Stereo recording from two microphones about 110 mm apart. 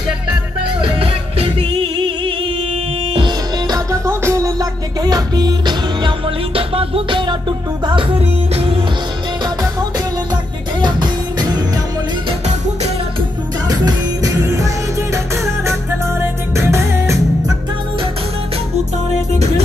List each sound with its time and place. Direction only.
0.7 s music: 55° right (ahead or behind)
3.2 s music: 40° right (ahead or behind)
3.9 s music: 25° right (ahead or behind); by 8.7 s 60° right (ahead or behind)
9.6 s music: 35° right (ahead or behind)
13.7 s music: 35° right (ahead or behind)
16.5 s music: 25° right (ahead or behind)